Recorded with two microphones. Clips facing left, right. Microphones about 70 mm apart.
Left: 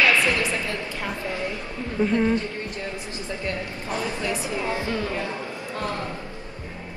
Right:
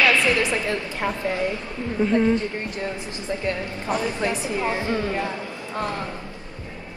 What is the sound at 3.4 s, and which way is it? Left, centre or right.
Speech, right.